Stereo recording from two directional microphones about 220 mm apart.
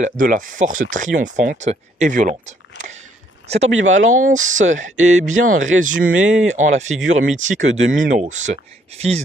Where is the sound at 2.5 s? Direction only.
35° right (ahead or behind).